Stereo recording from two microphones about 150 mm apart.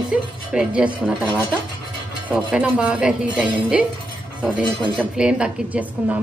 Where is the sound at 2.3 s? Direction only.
5° right (ahead or behind).